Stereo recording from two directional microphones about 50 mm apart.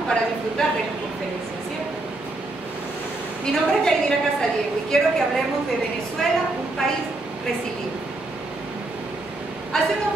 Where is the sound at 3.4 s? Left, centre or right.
Centre.